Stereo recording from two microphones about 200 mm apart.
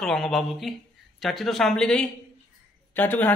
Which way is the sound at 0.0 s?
Centre (ahead or behind).